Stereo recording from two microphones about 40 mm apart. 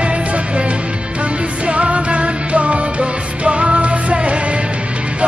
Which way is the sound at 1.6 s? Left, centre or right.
Right.